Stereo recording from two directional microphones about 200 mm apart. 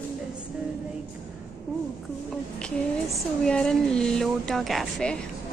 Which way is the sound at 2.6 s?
5° left (ahead or behind).